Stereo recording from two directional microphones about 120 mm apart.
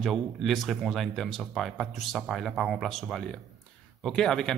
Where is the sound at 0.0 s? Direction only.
Centre (ahead or behind).